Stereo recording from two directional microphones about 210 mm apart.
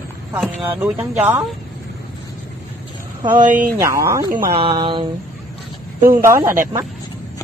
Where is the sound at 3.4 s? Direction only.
40° right (ahead or behind).